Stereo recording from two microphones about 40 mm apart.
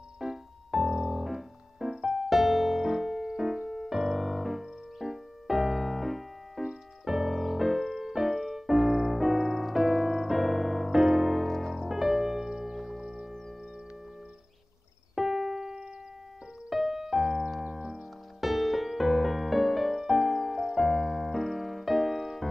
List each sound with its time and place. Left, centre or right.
0.2 s music: centre
2.2 s music: centre
11.7 s music: centre
12.4 s music: centre
12.7 s music: centre
13.0 s music: centre
15.1 s music: centre
16.7 s music: centre
18.4 s music: centre